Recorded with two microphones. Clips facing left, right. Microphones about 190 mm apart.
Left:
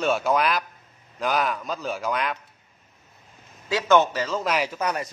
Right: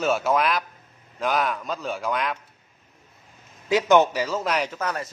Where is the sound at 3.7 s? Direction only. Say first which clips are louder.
Right 2 dB; 15° right (ahead or behind); by 4.7 s centre (ahead or behind).